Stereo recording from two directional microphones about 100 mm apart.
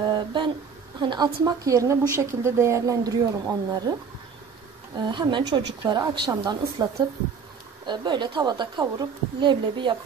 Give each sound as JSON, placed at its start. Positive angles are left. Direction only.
{"t": 0.0, "sound": "humming", "side_deg": -50}
{"t": 1.1, "sound": "speech", "side_deg": -40}
{"t": 4.9, "sound": "a woman's voice", "side_deg": -45}